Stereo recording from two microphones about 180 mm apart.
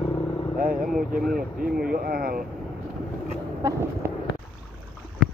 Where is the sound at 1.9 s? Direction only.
55° right (ahead or behind).